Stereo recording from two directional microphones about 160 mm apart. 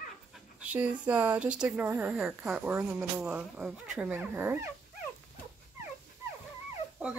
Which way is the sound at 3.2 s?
5° right (ahead or behind).